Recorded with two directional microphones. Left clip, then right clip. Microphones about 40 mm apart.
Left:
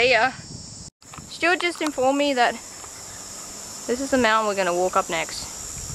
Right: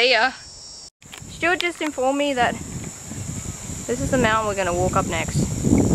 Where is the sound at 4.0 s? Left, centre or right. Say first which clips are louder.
Even; left.